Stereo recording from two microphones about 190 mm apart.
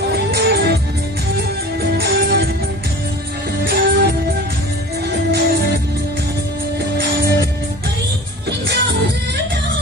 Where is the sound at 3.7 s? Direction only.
50° right (ahead or behind).